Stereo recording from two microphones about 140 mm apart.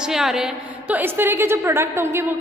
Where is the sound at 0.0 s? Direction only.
5° right (ahead or behind).